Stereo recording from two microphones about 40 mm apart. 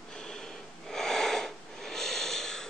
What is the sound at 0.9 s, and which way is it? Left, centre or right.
Wheeze, centre.